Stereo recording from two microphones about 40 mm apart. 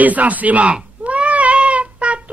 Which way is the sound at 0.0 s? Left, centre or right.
Right.